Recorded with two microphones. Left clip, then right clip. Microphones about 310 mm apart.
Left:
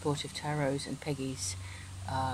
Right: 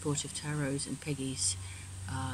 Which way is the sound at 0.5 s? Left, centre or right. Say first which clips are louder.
Left 5 dB; left.